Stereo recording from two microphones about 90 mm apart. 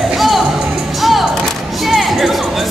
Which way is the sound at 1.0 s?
Centre (ahead or behind).